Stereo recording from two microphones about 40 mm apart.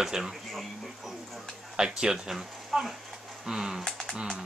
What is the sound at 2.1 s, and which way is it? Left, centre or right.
Speech, centre.